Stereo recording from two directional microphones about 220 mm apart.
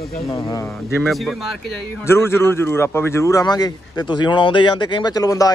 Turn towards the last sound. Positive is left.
turn(degrees=15)  # may be behind; listen again after turning